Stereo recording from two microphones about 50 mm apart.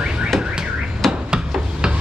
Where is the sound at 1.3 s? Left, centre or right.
Centre.